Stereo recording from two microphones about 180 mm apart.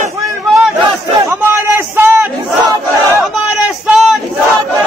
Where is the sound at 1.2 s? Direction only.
10° right (ahead or behind).